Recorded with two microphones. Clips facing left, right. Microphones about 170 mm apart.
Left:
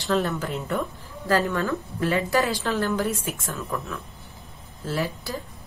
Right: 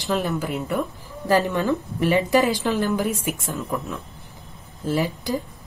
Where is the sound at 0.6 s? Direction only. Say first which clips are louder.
Right 1 dB; 5° right (ahead or behind).